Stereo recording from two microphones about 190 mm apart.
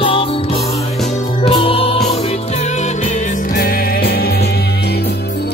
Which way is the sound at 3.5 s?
50° left (ahead or behind).